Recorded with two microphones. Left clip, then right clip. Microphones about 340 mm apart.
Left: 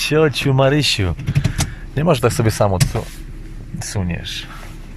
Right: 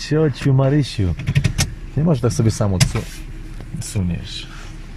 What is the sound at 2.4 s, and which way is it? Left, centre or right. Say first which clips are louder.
Speech: left 5 dB; left.